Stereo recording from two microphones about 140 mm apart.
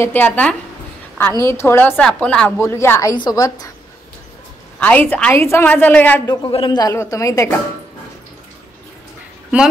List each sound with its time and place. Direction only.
0.0 s a woman's voice: 15° left (ahead or behind)
4.7 s a woman's voice: 10° left (ahead or behind)
6.2 s a woman's voice: 30° left (ahead or behind)